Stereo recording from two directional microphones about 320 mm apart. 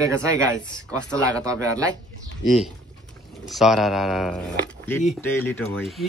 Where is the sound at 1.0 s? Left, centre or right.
Centre.